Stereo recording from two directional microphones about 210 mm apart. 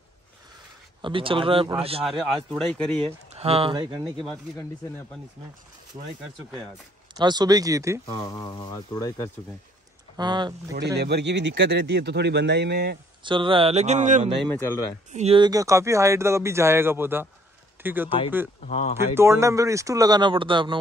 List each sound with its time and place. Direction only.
1.0 s speech: 25° right (ahead or behind)
2.0 s speech: centre (ahead or behind)
3.3 s speech: 30° right (ahead or behind)
4.6 s speech: 10° left (ahead or behind)
7.2 s speech: 20° right (ahead or behind)
8.1 s speech: 15° left (ahead or behind)
10.1 s speech: 20° right (ahead or behind)
11.0 s speech: 50° right (ahead or behind)
13.2 s speech: 25° right (ahead or behind)
14.6 s speech: 20° left (ahead or behind)
15.1 s speech: 25° right (ahead or behind); by 18.1 s 10° right (ahead or behind)
18.6 s speech: 35° left (ahead or behind)
19.1 s speech: 10° right (ahead or behind)